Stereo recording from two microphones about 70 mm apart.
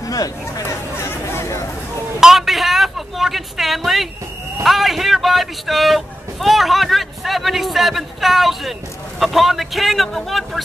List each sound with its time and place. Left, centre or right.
0.0 s chatter: left
0.6 s chatter: left
2.1 s a sound: centre
4.6 s a man's voice: centre